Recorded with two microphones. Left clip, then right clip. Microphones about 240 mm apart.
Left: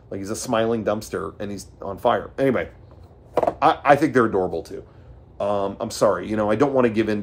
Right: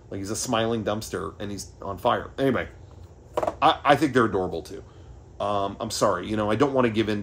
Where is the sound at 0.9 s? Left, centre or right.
Centre.